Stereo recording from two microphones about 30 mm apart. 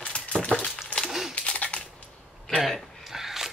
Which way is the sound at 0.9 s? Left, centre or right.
Left.